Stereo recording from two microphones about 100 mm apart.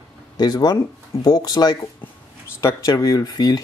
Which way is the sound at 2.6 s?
30° left (ahead or behind).